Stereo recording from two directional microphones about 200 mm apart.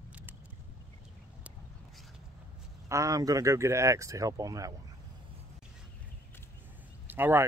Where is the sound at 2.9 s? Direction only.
15° right (ahead or behind).